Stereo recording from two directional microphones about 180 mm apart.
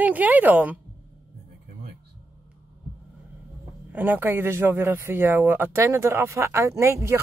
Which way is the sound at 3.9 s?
10° right (ahead or behind).